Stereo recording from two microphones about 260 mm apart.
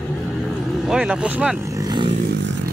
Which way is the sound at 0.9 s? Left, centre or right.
Centre.